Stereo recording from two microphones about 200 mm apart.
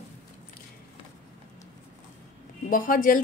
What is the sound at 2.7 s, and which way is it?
Speech, 45° left (ahead or behind).